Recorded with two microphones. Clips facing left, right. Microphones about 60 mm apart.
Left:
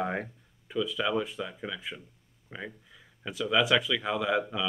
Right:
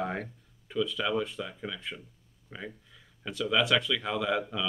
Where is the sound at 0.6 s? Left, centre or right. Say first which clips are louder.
Even; centre.